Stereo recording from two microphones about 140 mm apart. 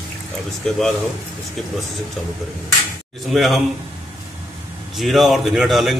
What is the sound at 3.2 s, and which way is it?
Speech, centre (ahead or behind).